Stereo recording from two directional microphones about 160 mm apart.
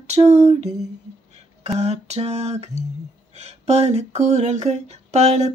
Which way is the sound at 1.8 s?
40° right (ahead or behind).